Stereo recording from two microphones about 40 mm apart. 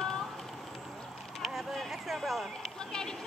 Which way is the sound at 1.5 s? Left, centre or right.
Centre.